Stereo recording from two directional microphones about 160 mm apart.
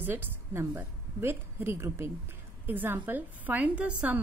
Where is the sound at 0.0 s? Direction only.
10° right (ahead or behind).